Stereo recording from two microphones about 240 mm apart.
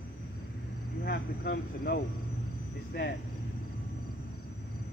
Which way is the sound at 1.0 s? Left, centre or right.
Left.